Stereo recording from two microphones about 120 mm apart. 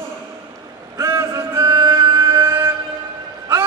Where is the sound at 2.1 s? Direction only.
25° right (ahead or behind).